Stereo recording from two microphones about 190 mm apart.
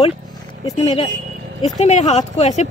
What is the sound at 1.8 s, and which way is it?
Speech, 35° left (ahead or behind).